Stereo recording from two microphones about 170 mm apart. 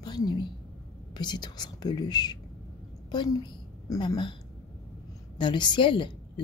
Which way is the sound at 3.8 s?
25° left (ahead or behind).